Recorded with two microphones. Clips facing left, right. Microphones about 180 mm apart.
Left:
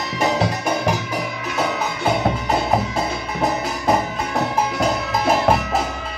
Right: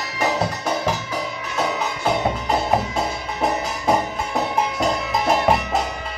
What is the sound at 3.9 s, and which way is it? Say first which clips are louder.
Music: even; centre (ahead or behind).